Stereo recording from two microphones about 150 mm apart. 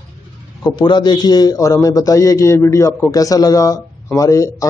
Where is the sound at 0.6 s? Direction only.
30° left (ahead or behind).